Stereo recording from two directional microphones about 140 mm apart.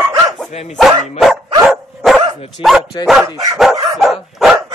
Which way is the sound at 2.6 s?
40° left (ahead or behind).